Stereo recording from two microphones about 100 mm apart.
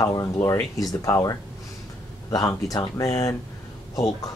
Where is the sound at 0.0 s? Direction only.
30° left (ahead or behind).